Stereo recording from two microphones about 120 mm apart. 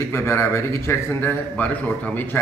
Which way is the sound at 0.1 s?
20° left (ahead or behind).